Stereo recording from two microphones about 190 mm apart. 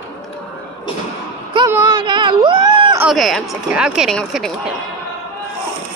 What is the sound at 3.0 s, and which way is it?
Speech, centre (ahead or behind).